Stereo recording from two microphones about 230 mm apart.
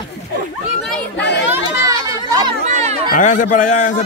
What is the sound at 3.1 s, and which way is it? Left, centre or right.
Speech, left.